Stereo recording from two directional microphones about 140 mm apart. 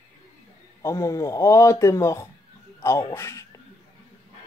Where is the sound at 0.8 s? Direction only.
20° left (ahead or behind).